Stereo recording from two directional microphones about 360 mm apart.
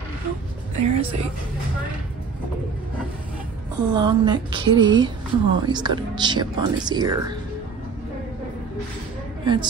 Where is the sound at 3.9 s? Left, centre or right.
Centre.